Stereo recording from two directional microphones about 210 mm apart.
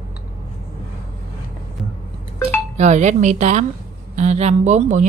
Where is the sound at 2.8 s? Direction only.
35° right (ahead or behind).